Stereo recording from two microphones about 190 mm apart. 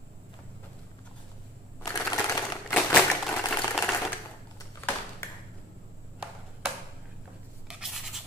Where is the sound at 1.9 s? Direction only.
20° left (ahead or behind).